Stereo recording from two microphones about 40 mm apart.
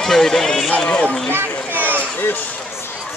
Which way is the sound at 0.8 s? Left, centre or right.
Left.